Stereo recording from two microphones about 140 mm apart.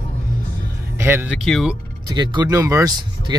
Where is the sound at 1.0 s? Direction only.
15° right (ahead or behind).